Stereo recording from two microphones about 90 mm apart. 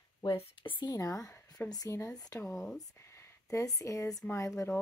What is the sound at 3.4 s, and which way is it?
Speech, 40° left (ahead or behind).